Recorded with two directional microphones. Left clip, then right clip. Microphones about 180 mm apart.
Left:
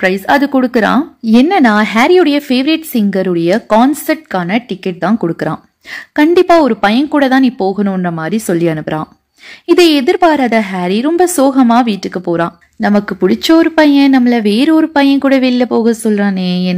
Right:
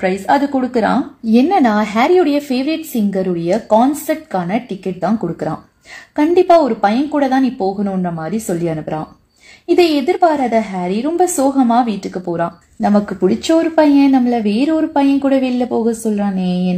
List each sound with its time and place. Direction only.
0.0 s a woman's voice: 30° left (ahead or behind)